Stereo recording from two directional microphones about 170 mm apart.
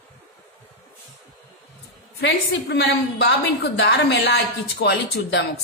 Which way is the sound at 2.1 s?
90° left.